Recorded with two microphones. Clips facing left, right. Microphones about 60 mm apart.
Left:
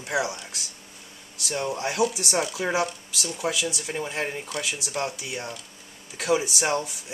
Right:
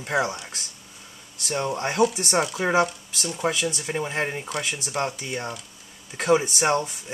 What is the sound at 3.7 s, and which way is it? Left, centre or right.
Speech, right.